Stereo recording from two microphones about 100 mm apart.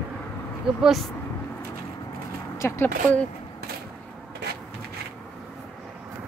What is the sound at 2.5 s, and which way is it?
Speech, 30° left (ahead or behind).